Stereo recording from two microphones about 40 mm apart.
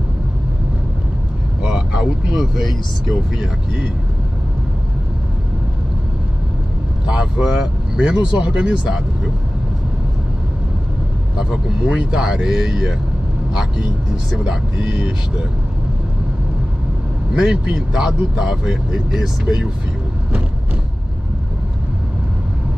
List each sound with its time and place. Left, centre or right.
1.7 s vehicle: right
2.3 s speech: centre
7.1 s speech: right
11.3 s a man's voice: centre
14.8 s speech: right
17.3 s speech: centre